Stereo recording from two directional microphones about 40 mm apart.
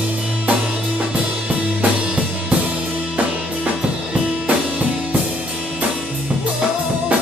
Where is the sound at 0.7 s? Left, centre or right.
Right.